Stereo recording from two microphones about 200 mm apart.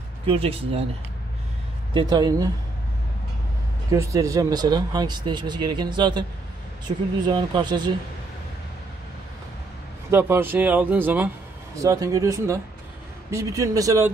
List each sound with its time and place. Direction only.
0.3 s speech: 30° right (ahead or behind)
2.0 s speech: 20° right (ahead or behind)
3.9 s speech: 15° right (ahead or behind)
7.2 s speech: 20° right (ahead or behind)
10.1 s speech: 10° right (ahead or behind)